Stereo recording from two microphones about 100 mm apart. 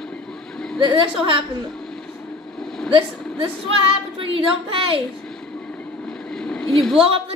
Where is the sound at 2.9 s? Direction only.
55° right (ahead or behind).